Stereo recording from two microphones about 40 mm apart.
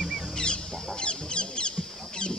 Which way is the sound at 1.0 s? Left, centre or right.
Left.